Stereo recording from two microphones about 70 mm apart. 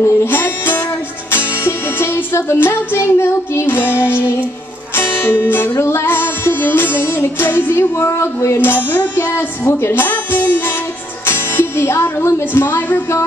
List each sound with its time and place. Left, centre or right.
0.0 s music: left
11.2 s speech: left